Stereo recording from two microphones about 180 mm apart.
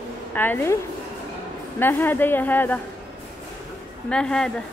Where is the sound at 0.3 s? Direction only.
10° left (ahead or behind).